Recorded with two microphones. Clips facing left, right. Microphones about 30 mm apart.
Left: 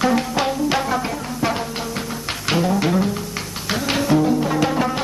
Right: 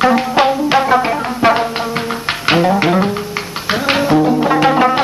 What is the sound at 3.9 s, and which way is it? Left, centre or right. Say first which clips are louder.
Music: right 5 dB; right.